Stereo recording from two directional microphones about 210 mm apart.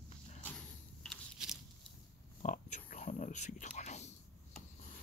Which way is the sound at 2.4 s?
35° left (ahead or behind).